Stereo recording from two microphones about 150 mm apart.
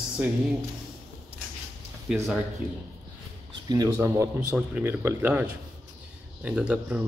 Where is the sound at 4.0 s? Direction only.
15° right (ahead or behind).